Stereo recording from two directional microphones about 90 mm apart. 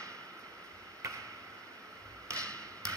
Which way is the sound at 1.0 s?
35° right (ahead or behind).